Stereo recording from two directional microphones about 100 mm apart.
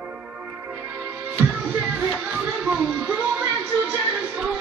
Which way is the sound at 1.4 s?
15° right (ahead or behind).